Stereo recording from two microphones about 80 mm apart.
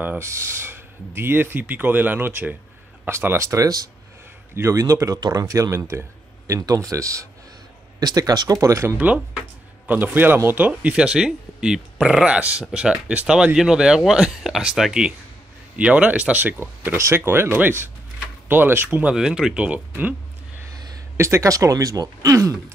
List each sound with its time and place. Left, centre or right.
0.2 s speech: right
8.0 s speech: right
8.9 s speech: centre
10.7 s speech: centre
19.0 s speech: centre
21.2 s speech: right